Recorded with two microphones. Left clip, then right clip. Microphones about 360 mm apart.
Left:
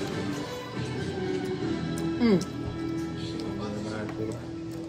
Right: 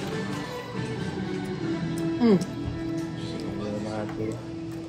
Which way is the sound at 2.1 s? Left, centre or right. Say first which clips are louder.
Right 3 dB; centre.